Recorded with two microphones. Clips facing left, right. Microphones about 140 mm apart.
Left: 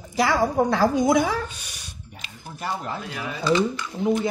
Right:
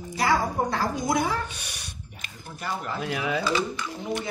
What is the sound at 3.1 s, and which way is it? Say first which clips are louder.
Speech: right 5 dB; 85° right.